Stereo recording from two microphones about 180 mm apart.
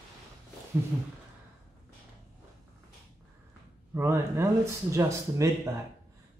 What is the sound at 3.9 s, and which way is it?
Speech, 15° right (ahead or behind).